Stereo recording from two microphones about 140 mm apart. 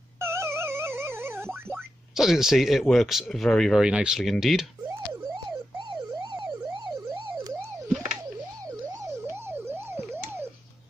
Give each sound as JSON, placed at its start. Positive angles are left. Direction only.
{"t": 0.2, "sound": "a sound", "side_deg": -20}
{"t": 1.7, "sound": "speech", "side_deg": -5}
{"t": 5.2, "sound": "emergency vehicle", "side_deg": -30}
{"t": 9.5, "sound": "emergency vehicle", "side_deg": -15}